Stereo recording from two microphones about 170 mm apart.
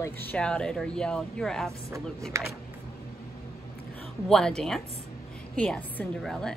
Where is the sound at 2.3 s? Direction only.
20° right (ahead or behind).